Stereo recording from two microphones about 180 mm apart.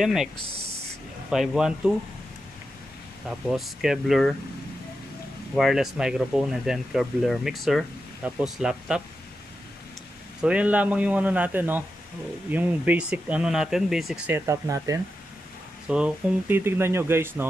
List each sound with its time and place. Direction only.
0.0 s speech: centre (ahead or behind)
1.3 s speech: centre (ahead or behind)
3.3 s speech: centre (ahead or behind)
5.6 s speech: centre (ahead or behind)
10.4 s speech: 5° right (ahead or behind)